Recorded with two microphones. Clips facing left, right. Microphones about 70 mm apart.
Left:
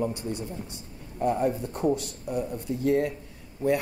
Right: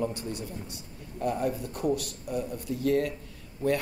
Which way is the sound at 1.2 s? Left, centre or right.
Left.